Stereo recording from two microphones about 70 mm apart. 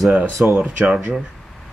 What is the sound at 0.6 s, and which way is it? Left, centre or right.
Speech, centre.